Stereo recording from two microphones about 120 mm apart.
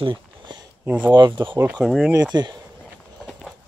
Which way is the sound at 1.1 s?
40° right (ahead or behind).